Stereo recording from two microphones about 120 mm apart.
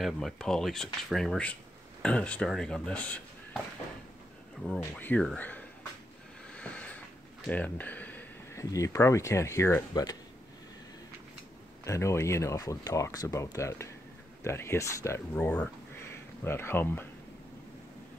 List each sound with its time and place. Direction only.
0.0 s speech: centre (ahead or behind)
4.9 s speech: 15° left (ahead or behind)
6.5 s a sound: 10° left (ahead or behind)
8.7 s speech: 25° left (ahead or behind)
11.8 s speech: 25° left (ahead or behind)